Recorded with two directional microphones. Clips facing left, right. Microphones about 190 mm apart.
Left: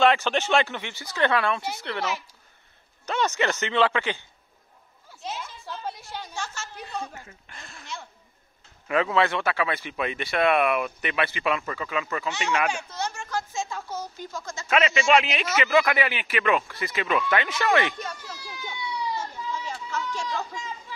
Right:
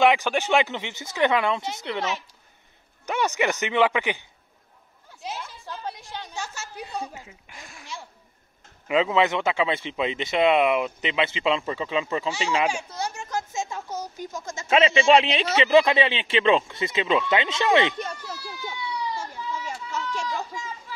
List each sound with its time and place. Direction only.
0.0 s a woman's voice: 15° right (ahead or behind)
3.1 s speech: 15° right (ahead or behind)
6.3 s a woman's voice: 15° right (ahead or behind); by 12.6 s 30° right (ahead or behind)
12.6 s a woman's voice: 10° right (ahead or behind)
18.3 s a sound: 10° right (ahead or behind)
20.2 s speech: 5° right (ahead or behind)